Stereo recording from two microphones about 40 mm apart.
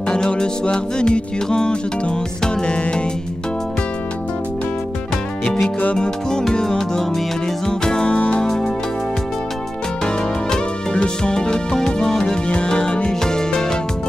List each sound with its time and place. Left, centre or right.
0.1 s music: centre
5.9 s music: centre
10.0 s music: left